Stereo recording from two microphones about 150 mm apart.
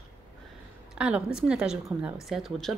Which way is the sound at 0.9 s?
5° right (ahead or behind).